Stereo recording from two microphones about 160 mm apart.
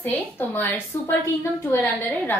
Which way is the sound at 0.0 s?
10° left (ahead or behind).